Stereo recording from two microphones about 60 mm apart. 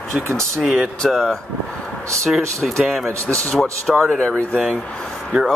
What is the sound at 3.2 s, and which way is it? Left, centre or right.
Speech, centre.